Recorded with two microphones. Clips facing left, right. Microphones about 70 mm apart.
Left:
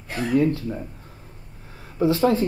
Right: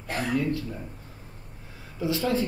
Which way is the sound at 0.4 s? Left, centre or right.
Left.